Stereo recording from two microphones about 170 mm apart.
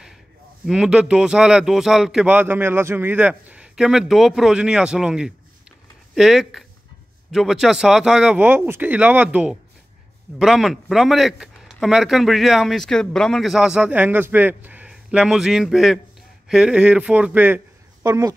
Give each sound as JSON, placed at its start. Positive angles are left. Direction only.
{"t": 0.7, "sound": "speech", "side_deg": -5}